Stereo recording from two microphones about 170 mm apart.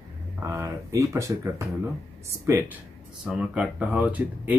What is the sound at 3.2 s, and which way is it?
Speech, 5° right (ahead or behind).